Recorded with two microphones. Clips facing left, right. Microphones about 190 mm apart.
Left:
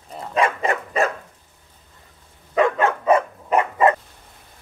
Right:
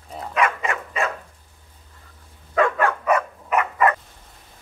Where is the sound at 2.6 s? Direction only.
25° left (ahead or behind).